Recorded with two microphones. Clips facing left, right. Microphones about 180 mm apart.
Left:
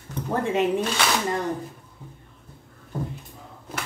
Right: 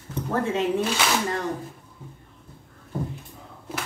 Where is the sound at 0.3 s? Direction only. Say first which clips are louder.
Left 1 dB; 15° left (ahead or behind).